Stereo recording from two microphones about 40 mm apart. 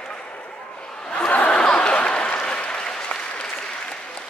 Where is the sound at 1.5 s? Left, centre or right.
Left.